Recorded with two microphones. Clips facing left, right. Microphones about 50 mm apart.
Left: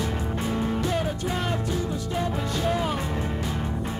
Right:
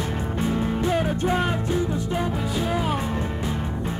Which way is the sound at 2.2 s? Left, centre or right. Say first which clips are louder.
Left 1 dB; centre.